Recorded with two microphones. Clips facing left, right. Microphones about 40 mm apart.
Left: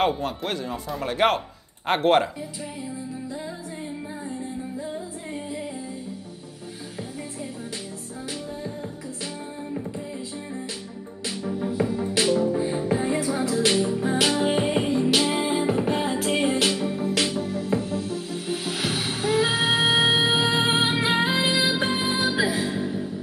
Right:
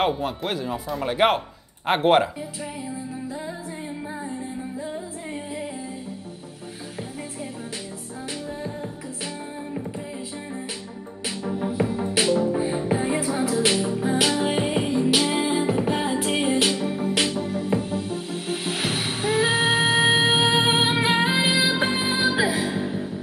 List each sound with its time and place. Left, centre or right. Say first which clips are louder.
0.0 s speech: even; centre
11.2 s music: right 1 dB; centre
13.7 s music: even; centre; by 23.0 s right